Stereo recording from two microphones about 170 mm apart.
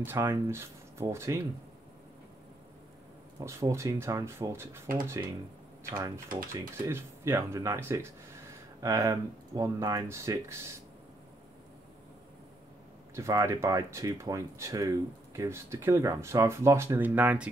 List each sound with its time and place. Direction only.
0.0 s speech: 15° right (ahead or behind)
3.3 s speech: 20° right (ahead or behind)
13.1 s speech: 20° right (ahead or behind)